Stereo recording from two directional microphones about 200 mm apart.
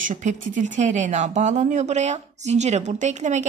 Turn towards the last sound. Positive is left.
turn(degrees=-35)  # may be behind; listen again after turning